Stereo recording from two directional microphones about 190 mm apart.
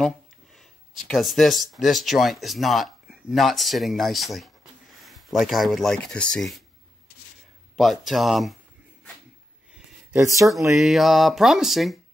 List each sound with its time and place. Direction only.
0.6 s speech: centre (ahead or behind)
7.7 s speech: centre (ahead or behind)
10.1 s speech: 15° right (ahead or behind)
10.7 s speech: centre (ahead or behind)